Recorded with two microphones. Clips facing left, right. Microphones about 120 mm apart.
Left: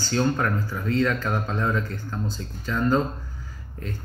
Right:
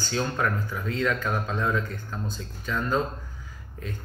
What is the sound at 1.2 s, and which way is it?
Speech, 10° right (ahead or behind).